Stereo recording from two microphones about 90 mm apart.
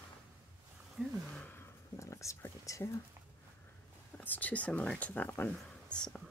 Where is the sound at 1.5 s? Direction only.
30° left (ahead or behind).